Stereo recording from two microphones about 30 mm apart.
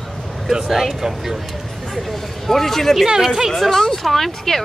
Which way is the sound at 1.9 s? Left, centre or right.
Centre.